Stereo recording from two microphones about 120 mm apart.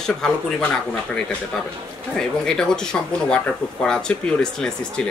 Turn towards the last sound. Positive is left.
turn(degrees=5)  # may be behind; listen again after turning